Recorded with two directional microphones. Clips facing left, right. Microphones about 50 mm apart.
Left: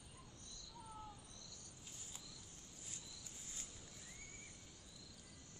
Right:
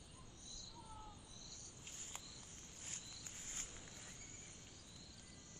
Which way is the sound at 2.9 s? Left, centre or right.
Right.